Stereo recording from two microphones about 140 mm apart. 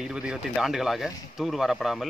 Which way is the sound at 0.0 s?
5° right (ahead or behind).